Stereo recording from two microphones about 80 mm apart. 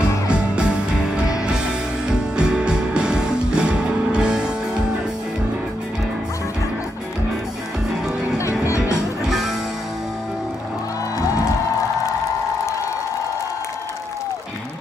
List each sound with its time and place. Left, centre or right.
2.0 s music: centre
8.4 s music: left
9.2 s music: centre